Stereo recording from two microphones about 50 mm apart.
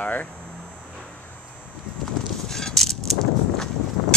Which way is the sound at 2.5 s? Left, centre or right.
Centre.